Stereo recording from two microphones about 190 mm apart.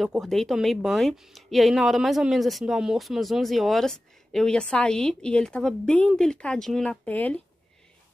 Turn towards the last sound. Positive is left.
turn(degrees=10)  # may be behind; listen again after turning